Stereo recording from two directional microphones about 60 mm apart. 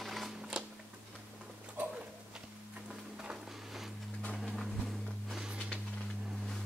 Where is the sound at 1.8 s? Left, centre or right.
Right.